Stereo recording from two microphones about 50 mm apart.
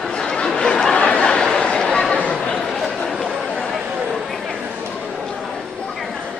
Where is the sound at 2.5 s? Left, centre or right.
Centre.